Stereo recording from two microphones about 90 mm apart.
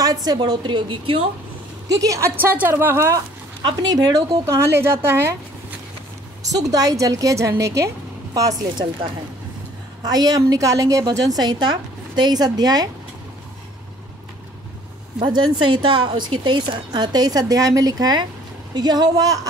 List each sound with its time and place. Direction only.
0.0 s a woman's voice: 45° right (ahead or behind)
0.4 s a woman's voice: 65° right (ahead or behind)
1.9 s a woman's voice: 40° right (ahead or behind)
2.3 s a woman's voice: 20° right (ahead or behind)
3.6 s a woman's voice: 45° right (ahead or behind)
4.5 s a woman's voice: 30° right (ahead or behind)
6.5 s a woman's voice: 40° right (ahead or behind)
10.0 s a woman's voice: 45° right (ahead or behind)
15.2 s a woman's voice: 65° right (ahead or behind); by 19.4 s 40° right (ahead or behind)